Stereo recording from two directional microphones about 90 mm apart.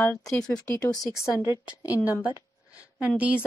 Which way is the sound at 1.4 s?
45° left (ahead or behind).